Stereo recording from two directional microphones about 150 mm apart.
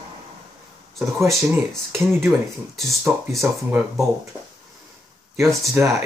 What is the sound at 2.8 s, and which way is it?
Speech, centre (ahead or behind).